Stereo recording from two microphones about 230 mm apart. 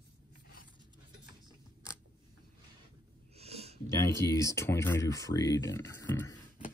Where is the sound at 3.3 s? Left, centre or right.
Right.